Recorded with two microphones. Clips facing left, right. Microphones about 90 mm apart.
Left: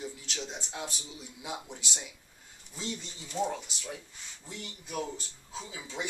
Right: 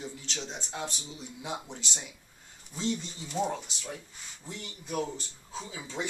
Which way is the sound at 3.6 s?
5° left (ahead or behind).